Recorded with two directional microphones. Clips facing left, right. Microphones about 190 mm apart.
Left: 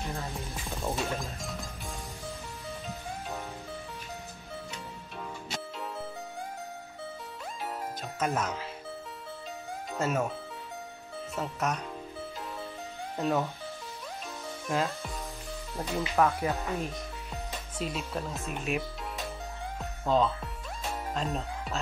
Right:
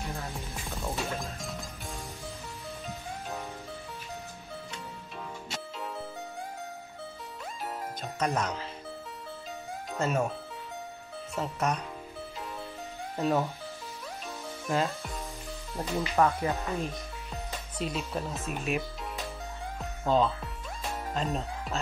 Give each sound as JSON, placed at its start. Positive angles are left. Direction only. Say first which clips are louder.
{"t": 0.9, "sound": "music", "louder": "left 1 dB", "side_deg": 0}
{"t": 8.0, "sound": "speech", "louder": "right 1 dB", "side_deg": 5}
{"t": 9.9, "sound": "speech", "louder": "right 1 dB", "side_deg": 5}
{"t": 11.3, "sound": "speech", "louder": "right 2 dB", "side_deg": 0}
{"t": 13.2, "sound": "speech", "louder": "right 1 dB", "side_deg": 0}
{"t": 14.7, "sound": "speech", "louder": "right 1 dB", "side_deg": 0}
{"t": 19.8, "sound": "music", "louder": "right 1 dB", "side_deg": 0}
{"t": 21.1, "sound": "speech", "louder": "right 2 dB", "side_deg": 0}